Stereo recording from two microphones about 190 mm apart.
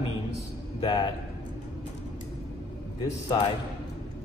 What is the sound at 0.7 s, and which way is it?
Speech, 25° left (ahead or behind).